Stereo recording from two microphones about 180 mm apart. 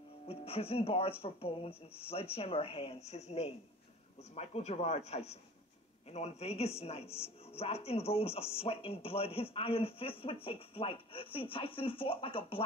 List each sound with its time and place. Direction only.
0.3 s speech: 35° left (ahead or behind)